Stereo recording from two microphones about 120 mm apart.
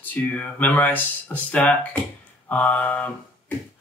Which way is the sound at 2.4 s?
15° left (ahead or behind).